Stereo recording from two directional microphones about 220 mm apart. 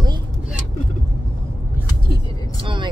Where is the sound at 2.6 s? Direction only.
20° right (ahead or behind).